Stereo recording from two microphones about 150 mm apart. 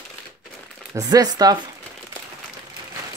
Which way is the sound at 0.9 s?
25° right (ahead or behind).